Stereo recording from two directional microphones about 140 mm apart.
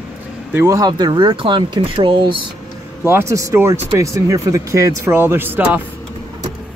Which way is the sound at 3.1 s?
20° right (ahead or behind).